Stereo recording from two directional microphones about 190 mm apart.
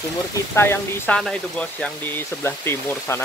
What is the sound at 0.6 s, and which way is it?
Speech, 10° left (ahead or behind).